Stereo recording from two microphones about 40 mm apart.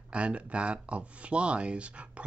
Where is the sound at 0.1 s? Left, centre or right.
Right.